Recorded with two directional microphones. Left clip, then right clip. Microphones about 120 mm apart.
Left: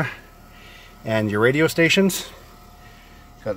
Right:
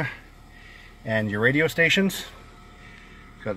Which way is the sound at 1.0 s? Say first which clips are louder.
Left 4 dB; 55° left (ahead or behind).